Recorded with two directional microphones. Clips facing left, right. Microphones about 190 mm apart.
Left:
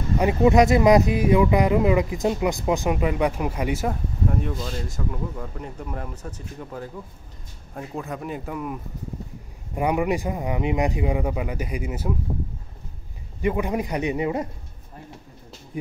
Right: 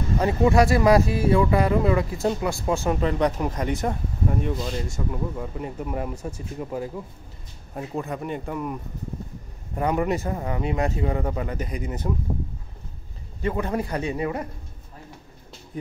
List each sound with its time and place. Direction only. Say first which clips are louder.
0.2 s speech: left 2 dB; 20° left (ahead or behind); by 8.7 s centre (ahead or behind)
9.8 s speech: left 1 dB; 10° left (ahead or behind)
13.4 s speech: left 2 dB; 15° left (ahead or behind)